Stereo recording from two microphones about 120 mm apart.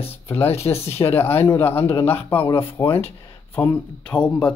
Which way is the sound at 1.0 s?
20° left (ahead or behind).